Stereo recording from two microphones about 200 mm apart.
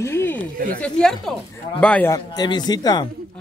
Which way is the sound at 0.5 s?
45° right (ahead or behind).